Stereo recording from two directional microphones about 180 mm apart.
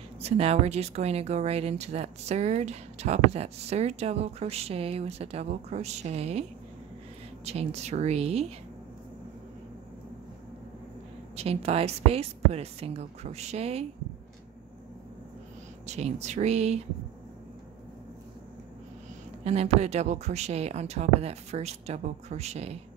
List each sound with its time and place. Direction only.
0.2 s speech: 35° right (ahead or behind)
7.4 s speech: 35° right (ahead or behind)
11.3 s speech: 35° right (ahead or behind)
15.9 s speech: 40° right (ahead or behind)
19.4 s speech: 35° right (ahead or behind)